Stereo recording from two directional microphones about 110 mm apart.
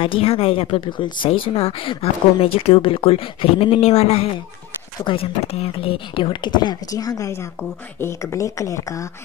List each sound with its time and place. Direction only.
0.0 s speech: 60° left (ahead or behind); by 9.0 s 30° left (ahead or behind)